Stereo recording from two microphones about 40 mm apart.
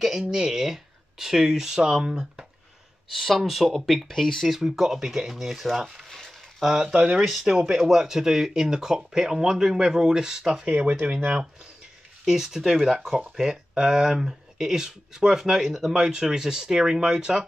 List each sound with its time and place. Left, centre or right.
0.3 s speech: centre
3.1 s speech: centre
4.5 s speech: centre
6.0 s a sound: centre
6.6 s speech: centre
12.3 s speech: centre